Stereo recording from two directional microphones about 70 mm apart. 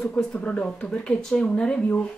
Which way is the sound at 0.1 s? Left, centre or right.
Centre.